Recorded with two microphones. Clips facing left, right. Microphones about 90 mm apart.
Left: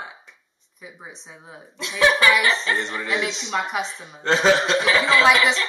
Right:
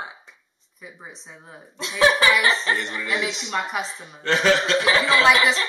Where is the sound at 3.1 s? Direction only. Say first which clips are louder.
Left 1 dB; 5° right (ahead or behind).